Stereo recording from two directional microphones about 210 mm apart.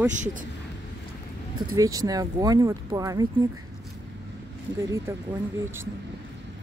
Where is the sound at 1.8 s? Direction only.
15° right (ahead or behind).